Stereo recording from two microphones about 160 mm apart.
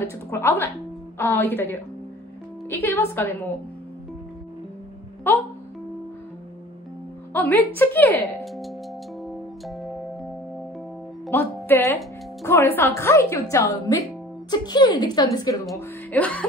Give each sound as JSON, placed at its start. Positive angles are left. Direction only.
{"t": 0.0, "sound": "speech", "side_deg": 15}
{"t": 5.3, "sound": "speech", "side_deg": 15}
{"t": 7.3, "sound": "speech", "side_deg": 10}
{"t": 9.2, "sound": "music", "side_deg": 0}
{"t": 11.2, "sound": "music", "side_deg": 15}
{"t": 12.4, "sound": "a woman's voice", "side_deg": 15}
{"t": 15.8, "sound": "speech", "side_deg": 10}